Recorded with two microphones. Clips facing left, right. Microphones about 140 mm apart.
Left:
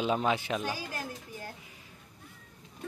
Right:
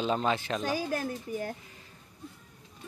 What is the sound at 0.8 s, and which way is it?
Speech, 55° right (ahead or behind).